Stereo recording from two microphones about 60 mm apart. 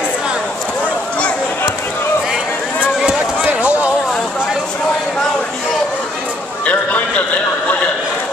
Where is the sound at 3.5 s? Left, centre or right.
Right.